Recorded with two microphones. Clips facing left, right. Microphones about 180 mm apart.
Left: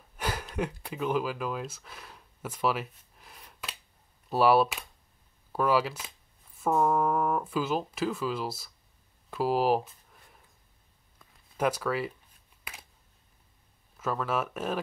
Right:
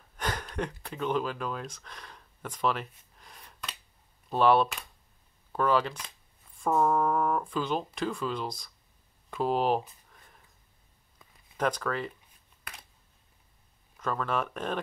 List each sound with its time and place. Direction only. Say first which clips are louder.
0.2 s speech: left 1 dB; 10° left (ahead or behind)
10.1 s a sound: even; 5° left (ahead or behind)
11.5 s speech: left 2 dB; 10° left (ahead or behind)
13.9 s speech: left 1 dB; 5° left (ahead or behind)